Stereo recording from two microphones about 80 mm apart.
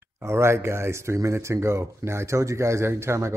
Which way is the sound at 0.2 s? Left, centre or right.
Right.